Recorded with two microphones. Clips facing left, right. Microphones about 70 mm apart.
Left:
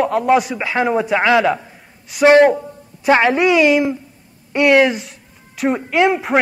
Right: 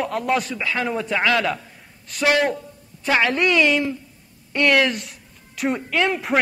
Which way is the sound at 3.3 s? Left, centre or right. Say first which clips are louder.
Left 5 dB; centre.